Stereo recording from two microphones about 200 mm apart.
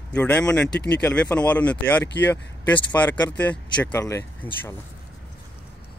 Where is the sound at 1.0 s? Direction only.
5° left (ahead or behind).